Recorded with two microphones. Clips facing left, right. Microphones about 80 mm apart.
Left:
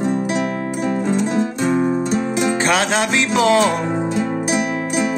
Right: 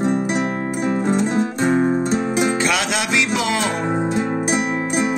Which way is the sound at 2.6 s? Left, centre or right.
Left.